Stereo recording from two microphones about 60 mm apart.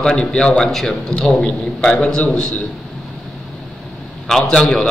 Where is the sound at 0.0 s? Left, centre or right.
Centre.